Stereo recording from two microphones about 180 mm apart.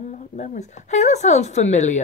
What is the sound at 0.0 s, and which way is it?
Speech, 40° left (ahead or behind).